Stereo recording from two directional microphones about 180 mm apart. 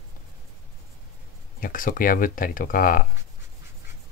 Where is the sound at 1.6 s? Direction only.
50° left (ahead or behind).